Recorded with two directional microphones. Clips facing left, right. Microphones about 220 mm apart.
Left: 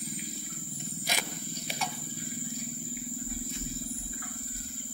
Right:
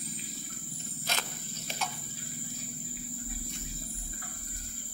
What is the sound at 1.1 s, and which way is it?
Wild animals, 15° left (ahead or behind).